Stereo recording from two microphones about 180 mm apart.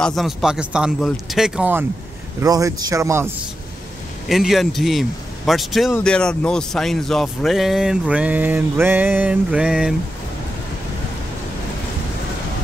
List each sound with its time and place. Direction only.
0.0 s speech: centre (ahead or behind)
2.4 s speech: 20° right (ahead or behind)
4.3 s speech: centre (ahead or behind)